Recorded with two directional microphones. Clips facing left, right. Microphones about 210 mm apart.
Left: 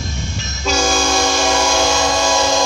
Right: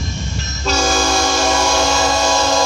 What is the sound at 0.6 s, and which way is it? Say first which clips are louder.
Train: even; centre (ahead or behind).